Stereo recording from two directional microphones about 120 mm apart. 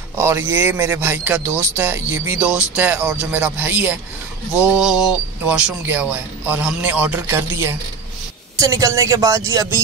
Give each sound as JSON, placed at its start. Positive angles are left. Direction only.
{"t": 0.1, "sound": "a man's voice", "side_deg": -20}